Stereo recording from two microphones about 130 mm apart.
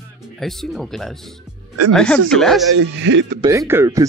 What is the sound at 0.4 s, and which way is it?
Speech, centre (ahead or behind).